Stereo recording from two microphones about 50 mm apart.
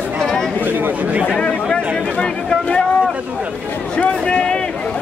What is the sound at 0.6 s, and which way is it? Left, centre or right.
Chatter, right.